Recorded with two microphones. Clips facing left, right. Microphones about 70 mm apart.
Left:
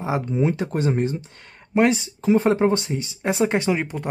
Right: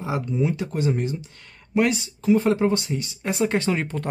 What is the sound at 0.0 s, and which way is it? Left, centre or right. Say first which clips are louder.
Speech: left 2 dB; left.